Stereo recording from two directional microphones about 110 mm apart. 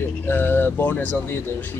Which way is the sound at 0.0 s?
20° left (ahead or behind).